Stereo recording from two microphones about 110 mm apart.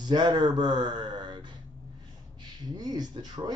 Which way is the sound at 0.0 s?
40° right (ahead or behind).